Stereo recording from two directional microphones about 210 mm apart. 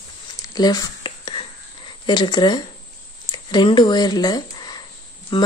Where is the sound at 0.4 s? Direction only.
20° left (ahead or behind).